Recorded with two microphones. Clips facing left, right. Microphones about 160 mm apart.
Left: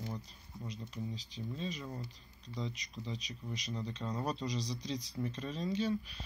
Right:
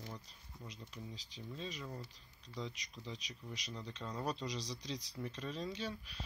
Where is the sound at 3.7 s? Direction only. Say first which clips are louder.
Left 5 dB; 5° left (ahead or behind).